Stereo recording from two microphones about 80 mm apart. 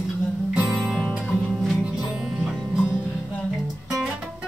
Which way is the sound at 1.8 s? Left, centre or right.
Centre.